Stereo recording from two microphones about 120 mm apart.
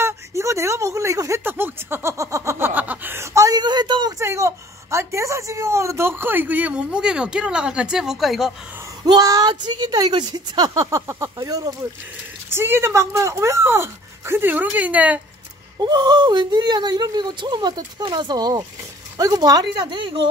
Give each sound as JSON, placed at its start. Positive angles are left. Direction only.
{"t": 0.0, "sound": "a sound", "side_deg": -25}
{"t": 4.2, "sound": "a woman's voice", "side_deg": -25}
{"t": 9.0, "sound": "speech", "side_deg": -30}
{"t": 12.4, "sound": "speech", "side_deg": -20}
{"t": 15.8, "sound": "speech", "side_deg": -35}